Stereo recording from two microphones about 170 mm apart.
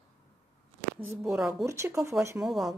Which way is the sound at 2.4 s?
Centre (ahead or behind).